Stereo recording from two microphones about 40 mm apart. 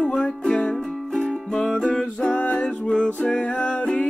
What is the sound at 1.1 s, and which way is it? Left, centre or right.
Music, centre.